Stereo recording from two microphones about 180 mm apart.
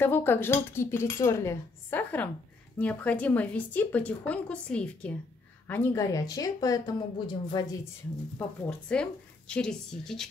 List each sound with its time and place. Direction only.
0.0 s speech: 10° left (ahead or behind)
8.4 s a woman's voice: 5° left (ahead or behind)